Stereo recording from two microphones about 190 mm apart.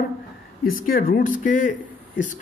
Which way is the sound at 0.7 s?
50° left (ahead or behind).